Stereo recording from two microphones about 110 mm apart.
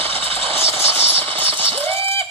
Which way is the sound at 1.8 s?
25° left (ahead or behind).